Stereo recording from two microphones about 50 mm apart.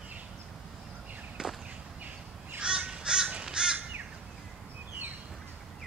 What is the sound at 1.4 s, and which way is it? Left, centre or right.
Whip, centre.